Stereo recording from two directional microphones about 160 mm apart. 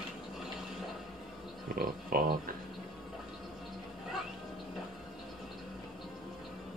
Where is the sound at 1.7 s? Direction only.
70° right (ahead or behind).